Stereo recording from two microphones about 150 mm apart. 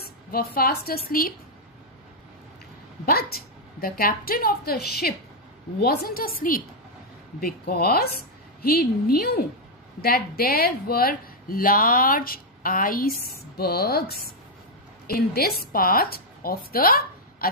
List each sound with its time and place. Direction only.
0.0 s a woman's voice: 90° left
3.1 s a woman's voice: 90° left; by 6.6 s 75° left (ahead or behind)
7.3 s speech: 90° left; by 13.1 s 70° left (ahead or behind)
13.2 s a woman's voice: 90° left